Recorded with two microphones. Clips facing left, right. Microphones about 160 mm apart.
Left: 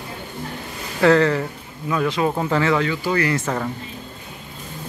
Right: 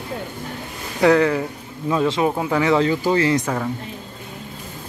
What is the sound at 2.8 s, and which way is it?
Speech, 30° right (ahead or behind).